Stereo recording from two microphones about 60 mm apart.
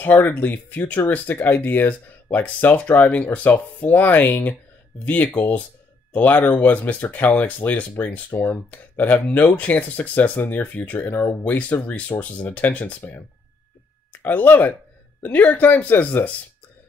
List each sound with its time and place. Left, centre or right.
0.0 s speech: left
8.3 s speech: left
8.6 s speech: left
14.1 s speech: left